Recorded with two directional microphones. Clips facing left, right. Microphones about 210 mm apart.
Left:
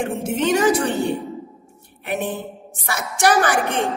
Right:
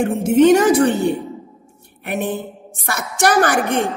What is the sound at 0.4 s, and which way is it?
Speech, 45° right (ahead or behind).